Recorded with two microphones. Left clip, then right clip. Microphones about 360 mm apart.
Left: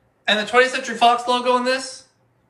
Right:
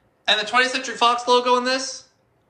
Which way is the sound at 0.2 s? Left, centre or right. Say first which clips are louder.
Left 2 dB; centre.